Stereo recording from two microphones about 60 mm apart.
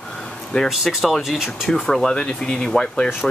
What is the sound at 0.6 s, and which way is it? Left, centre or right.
Speech, centre.